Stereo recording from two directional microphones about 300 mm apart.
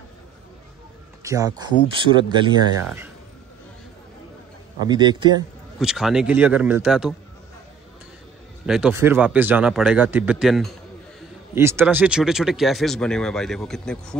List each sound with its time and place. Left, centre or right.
1.2 s speech: centre
4.7 s speech: centre
5.8 s speech: centre
8.6 s speech: centre